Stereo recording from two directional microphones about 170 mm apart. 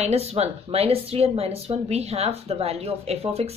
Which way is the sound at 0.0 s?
40° right (ahead or behind).